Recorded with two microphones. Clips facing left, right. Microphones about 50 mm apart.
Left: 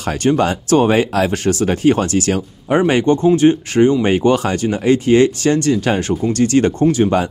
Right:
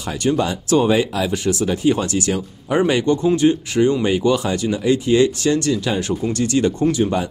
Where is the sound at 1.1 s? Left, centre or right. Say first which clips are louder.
Left 4 dB; left.